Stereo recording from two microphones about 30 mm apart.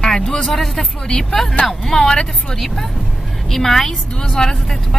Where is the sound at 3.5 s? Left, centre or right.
Centre.